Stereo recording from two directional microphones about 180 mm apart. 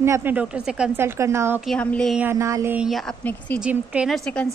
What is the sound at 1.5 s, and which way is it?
Speech, 5° left (ahead or behind).